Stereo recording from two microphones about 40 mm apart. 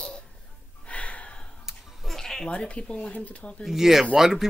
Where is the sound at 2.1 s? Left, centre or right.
Centre.